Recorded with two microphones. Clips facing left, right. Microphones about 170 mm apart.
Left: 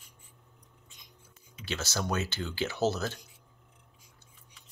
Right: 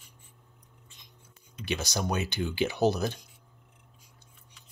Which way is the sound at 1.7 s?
15° right (ahead or behind).